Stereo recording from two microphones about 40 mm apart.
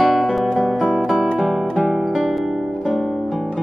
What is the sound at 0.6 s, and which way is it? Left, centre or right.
Music, centre.